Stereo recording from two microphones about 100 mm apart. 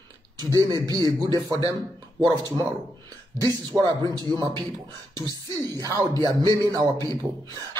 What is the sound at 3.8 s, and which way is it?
A man's voice, 40° right (ahead or behind).